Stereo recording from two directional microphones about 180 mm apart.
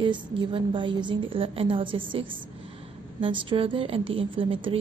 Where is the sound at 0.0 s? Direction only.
25° right (ahead or behind).